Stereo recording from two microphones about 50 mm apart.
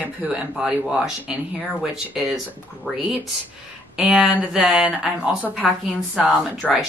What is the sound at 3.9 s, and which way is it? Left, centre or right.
Speech, centre.